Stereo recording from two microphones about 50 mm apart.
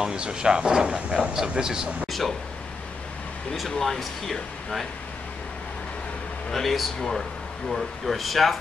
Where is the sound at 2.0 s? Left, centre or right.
Centre.